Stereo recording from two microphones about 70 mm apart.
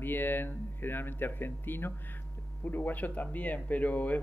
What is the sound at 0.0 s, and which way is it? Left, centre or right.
Speech, left.